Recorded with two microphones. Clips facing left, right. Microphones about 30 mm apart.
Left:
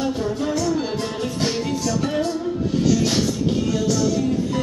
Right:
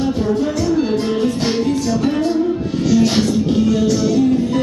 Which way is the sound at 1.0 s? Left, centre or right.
Centre.